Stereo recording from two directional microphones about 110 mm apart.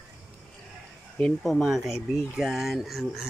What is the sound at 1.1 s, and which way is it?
Speech, 5° left (ahead or behind).